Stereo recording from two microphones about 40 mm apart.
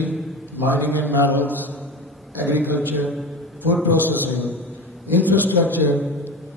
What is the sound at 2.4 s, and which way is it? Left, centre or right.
A man's voice, right.